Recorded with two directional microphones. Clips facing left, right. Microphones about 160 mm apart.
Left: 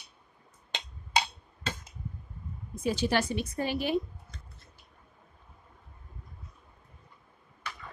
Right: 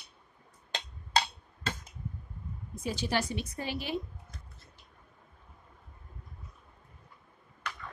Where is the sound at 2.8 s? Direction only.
60° left (ahead or behind).